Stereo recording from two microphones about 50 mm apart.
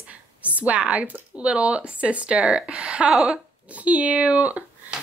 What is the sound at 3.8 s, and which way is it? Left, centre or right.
Speech, right.